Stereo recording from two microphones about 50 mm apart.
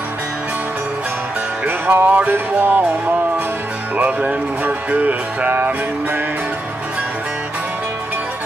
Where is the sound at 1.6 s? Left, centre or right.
Right.